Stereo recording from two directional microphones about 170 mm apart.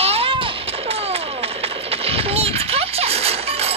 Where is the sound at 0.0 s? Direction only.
35° right (ahead or behind).